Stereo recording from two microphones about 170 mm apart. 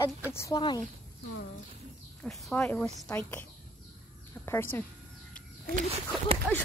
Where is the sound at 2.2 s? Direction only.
5° left (ahead or behind).